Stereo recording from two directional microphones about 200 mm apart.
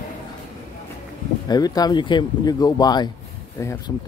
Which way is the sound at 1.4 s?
20° left (ahead or behind).